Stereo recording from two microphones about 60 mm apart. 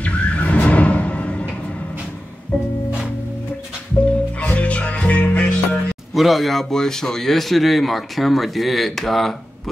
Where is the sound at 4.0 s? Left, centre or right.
Left.